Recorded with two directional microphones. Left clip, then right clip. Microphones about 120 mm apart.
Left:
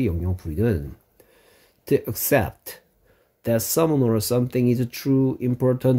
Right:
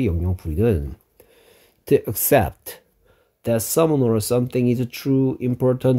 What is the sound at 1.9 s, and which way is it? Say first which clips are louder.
Speech: right 3 dB; 40° right (ahead or behind).